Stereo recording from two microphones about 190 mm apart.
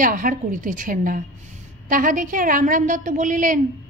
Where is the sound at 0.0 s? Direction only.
45° right (ahead or behind).